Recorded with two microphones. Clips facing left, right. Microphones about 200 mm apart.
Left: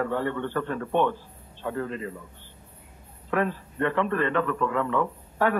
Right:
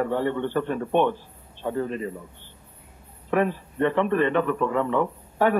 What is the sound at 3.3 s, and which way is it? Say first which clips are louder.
Speech: right 3 dB; 20° right (ahead or behind).